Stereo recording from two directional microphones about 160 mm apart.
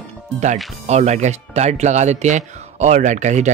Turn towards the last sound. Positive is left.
turn(degrees=-45)  # may be behind; listen again after turning